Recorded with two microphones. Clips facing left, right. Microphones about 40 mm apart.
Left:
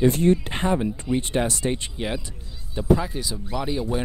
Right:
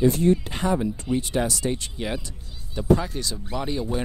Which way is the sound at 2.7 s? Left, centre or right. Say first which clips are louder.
Even; centre.